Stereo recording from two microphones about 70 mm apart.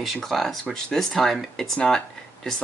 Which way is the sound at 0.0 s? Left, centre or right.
Centre.